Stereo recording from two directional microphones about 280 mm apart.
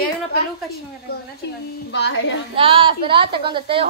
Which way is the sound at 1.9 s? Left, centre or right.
Left.